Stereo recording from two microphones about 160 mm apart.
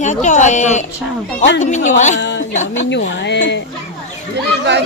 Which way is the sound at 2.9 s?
90° left.